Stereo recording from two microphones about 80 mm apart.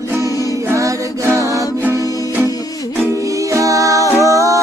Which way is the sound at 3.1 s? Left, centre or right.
Right.